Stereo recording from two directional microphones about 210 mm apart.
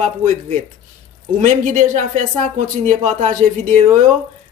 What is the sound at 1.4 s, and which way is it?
A man's voice, 35° right (ahead or behind).